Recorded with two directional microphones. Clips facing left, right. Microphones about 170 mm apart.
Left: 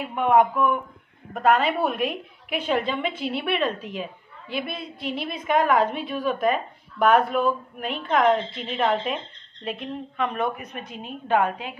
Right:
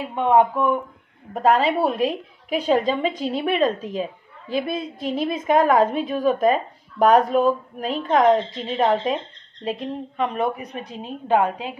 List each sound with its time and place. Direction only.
0.0 s a woman's voice: 25° right (ahead or behind)